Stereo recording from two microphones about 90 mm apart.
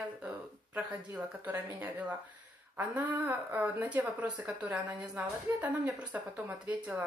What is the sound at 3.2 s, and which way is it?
A woman's voice, 20° right (ahead or behind).